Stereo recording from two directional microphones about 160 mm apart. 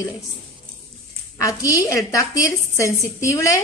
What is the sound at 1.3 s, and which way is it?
A woman's voice, 20° left (ahead or behind).